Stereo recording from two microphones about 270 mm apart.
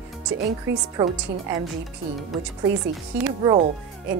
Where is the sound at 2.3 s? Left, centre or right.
Centre.